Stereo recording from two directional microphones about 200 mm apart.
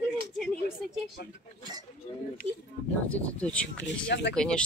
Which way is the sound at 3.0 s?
5° left (ahead or behind).